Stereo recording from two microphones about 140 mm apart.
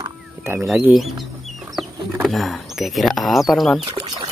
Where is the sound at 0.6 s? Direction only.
5° right (ahead or behind).